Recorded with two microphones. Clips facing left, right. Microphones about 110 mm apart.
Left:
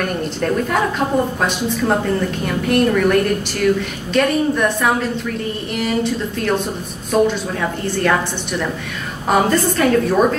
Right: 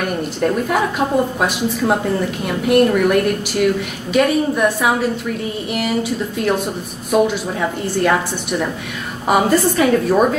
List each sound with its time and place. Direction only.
0.4 s a woman's voice: 5° right (ahead or behind)